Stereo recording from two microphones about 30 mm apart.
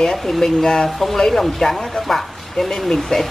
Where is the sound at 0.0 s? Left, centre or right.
Centre.